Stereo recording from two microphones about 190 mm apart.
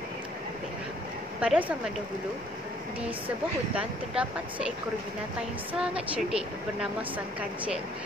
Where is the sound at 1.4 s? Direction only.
5° right (ahead or behind).